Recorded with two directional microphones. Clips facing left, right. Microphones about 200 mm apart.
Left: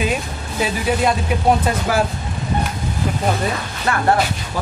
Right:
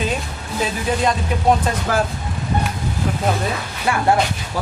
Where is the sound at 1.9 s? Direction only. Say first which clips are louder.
Left 1 dB; 10° left (ahead or behind).